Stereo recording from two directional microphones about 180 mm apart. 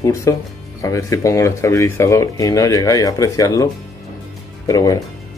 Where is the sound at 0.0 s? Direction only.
15° left (ahead or behind).